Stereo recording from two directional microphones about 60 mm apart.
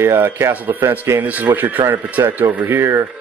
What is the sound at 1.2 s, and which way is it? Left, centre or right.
Speech, right.